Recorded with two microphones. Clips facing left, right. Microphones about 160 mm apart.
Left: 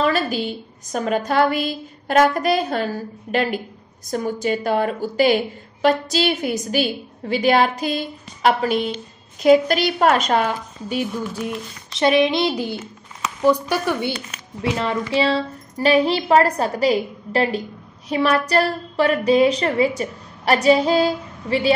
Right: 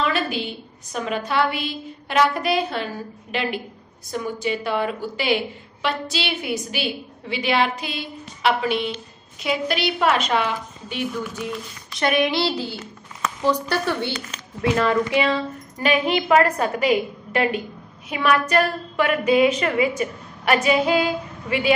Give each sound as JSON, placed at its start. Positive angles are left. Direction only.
{"t": 0.0, "sound": "a sound", "side_deg": 40}
{"t": 0.9, "sound": "a woman's voice", "side_deg": 45}
{"t": 11.9, "sound": "a woman's voice", "side_deg": 25}
{"t": 14.6, "sound": "a woman's voice", "side_deg": 30}